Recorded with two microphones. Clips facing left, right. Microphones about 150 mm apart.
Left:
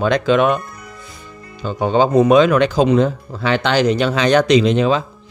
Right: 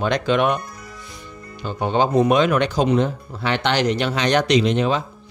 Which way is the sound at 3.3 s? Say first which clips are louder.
Left 4 dB; 90° left.